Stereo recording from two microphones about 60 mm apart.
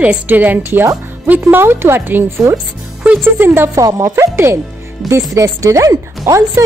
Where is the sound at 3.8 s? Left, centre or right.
Right.